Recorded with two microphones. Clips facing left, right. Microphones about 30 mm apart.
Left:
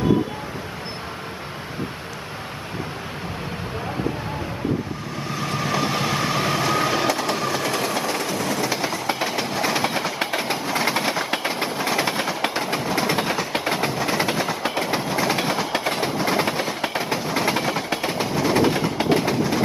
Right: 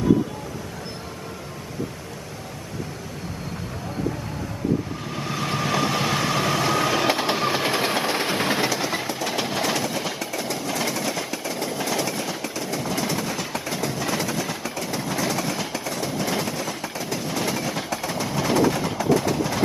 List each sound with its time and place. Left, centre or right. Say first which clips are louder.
5.3 s vehicle: even; centre
7.1 s train: right 1 dB; right
9.3 s train: left 1 dB; centre
9.8 s train: left 4 dB; left
13.9 s train: left 3 dB; left
14.2 s train: left 4 dB; left
16.1 s train: left 2 dB; left
16.4 s train: left 5 dB; left
18.3 s train: left 1 dB; centre
18.6 s train: even; left
18.9 s train: left 1 dB; left